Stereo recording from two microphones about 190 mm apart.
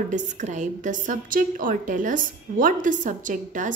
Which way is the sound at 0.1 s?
40° right (ahead or behind).